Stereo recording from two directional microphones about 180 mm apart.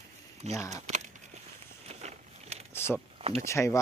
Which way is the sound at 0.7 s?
40° right (ahead or behind).